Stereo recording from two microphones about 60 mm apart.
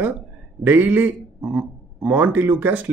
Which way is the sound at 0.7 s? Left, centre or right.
Right.